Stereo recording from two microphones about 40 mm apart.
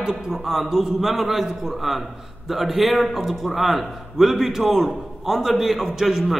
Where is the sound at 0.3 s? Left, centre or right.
Centre.